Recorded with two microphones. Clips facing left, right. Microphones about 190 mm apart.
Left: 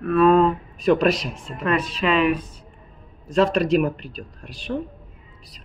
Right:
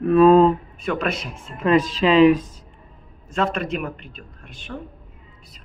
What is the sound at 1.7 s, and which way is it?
Speech, 90° right.